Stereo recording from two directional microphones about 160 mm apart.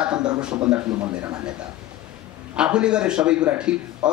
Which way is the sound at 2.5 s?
5° right (ahead or behind).